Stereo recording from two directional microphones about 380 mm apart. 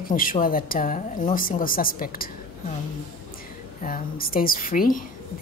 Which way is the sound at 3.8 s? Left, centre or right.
Left.